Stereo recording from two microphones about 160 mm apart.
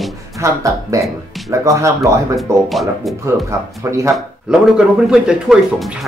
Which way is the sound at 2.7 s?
Centre (ahead or behind).